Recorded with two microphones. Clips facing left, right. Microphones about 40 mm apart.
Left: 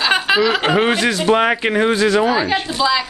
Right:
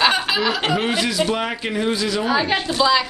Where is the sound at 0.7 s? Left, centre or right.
Left.